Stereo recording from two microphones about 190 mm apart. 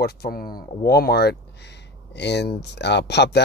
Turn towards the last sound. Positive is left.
turn(degrees=65)  # may be behind; listen again after turning